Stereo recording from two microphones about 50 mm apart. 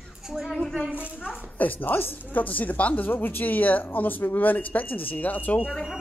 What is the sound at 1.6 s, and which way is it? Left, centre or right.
Speech, left.